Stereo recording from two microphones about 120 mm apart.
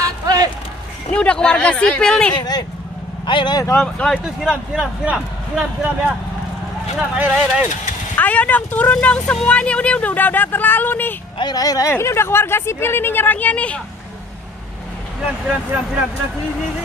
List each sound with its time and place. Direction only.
0.0 s a sound: 30° right (ahead or behind)
1.1 s speech: 10° left (ahead or behind)
2.3 s speech: 35° left (ahead or behind)
3.7 s speech: 5° left (ahead or behind)
4.5 s speech: 5° right (ahead or behind)
7.2 s speech: 10° right (ahead or behind)
8.2 s speech: 10° left (ahead or behind)
11.3 s speech: 35° left (ahead or behind); by 13.7 s 10° left (ahead or behind)
15.4 s speech: 15° right (ahead or behind)